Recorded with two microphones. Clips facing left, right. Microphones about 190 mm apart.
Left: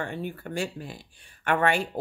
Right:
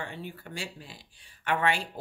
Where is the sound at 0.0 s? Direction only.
50° left (ahead or behind).